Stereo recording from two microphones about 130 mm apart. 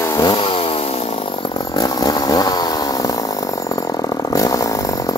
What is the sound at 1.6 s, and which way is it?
Chainsaw, 30° left (ahead or behind).